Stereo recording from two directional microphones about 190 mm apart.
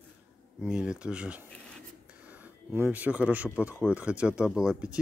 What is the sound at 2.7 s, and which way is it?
Speech, 10° right (ahead or behind).